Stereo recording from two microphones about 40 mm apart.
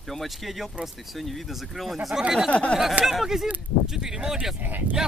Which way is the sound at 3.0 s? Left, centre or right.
Centre.